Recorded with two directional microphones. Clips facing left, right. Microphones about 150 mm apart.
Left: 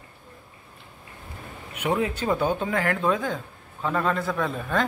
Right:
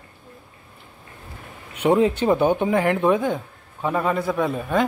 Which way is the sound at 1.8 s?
30° right (ahead or behind).